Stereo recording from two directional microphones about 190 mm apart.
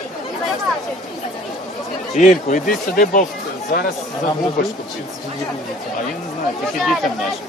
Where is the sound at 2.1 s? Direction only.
40° left (ahead or behind).